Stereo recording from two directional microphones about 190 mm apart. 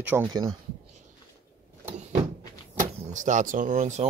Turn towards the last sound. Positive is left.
turn(degrees=-40)  # may be behind; listen again after turning